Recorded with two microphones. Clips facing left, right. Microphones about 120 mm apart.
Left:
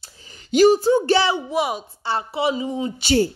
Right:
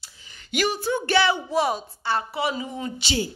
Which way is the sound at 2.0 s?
25° left (ahead or behind).